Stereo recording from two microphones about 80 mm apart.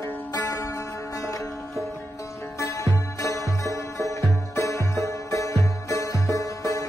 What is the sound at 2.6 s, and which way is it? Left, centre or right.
Music, left.